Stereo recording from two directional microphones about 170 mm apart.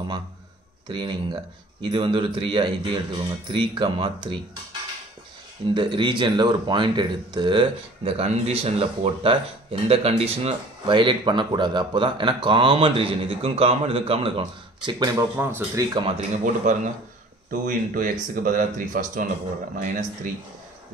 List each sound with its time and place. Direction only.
0.8 s a man's voice: 25° right (ahead or behind)
5.8 s a man's voice: 30° right (ahead or behind)
15.3 s a man's voice: 10° right (ahead or behind)
16.2 s speech: 45° right (ahead or behind)